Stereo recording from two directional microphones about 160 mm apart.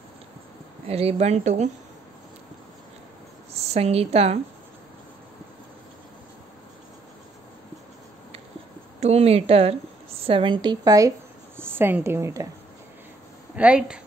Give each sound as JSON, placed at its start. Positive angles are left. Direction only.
{"t": 0.8, "sound": "speech", "side_deg": -40}
{"t": 3.5, "sound": "a woman's voice", "side_deg": -40}
{"t": 9.0, "sound": "a woman's voice", "side_deg": -40}
{"t": 13.6, "sound": "speech", "side_deg": -5}